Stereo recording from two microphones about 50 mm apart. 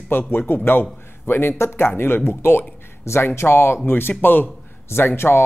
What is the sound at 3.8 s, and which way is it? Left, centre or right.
Speech, left.